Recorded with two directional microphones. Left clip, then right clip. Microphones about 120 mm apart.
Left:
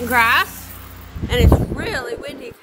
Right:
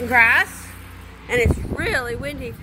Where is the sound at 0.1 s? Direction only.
35° left (ahead or behind).